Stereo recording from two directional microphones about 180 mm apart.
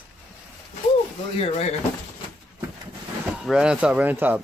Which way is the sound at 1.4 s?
35° left (ahead or behind).